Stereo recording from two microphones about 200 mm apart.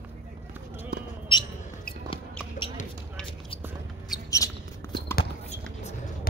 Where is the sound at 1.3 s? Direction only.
25° left (ahead or behind).